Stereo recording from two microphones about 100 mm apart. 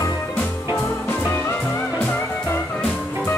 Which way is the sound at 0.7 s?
20° left (ahead or behind).